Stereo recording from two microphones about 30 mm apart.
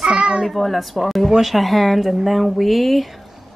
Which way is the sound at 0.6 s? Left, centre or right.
Centre.